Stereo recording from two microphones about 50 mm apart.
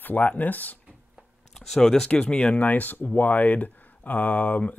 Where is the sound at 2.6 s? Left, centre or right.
Left.